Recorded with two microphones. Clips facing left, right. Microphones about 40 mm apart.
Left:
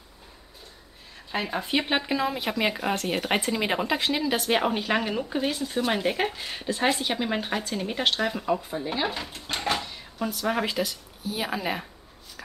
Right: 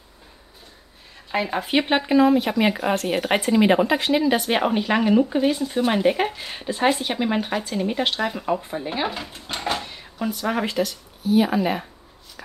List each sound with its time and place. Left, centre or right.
1.5 s speech: right
1.9 s speech: centre
8.5 s speech: right
10.1 s speech: centre